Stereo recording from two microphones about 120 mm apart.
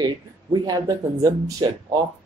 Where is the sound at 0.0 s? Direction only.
35° right (ahead or behind).